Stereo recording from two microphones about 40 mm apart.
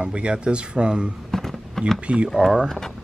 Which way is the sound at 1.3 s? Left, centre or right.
Centre.